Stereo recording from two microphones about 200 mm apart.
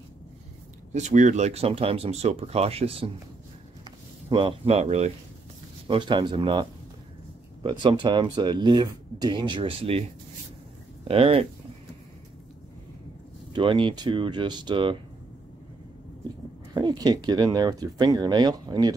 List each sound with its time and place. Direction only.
0.9 s speech: 35° right (ahead or behind)
4.3 s speech: 25° right (ahead or behind)
11.1 s speech: 30° right (ahead or behind)
13.5 s speech: 25° right (ahead or behind)
16.7 s speech: 20° right (ahead or behind)